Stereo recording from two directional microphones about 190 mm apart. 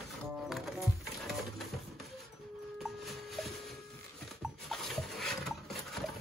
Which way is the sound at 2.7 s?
Centre (ahead or behind).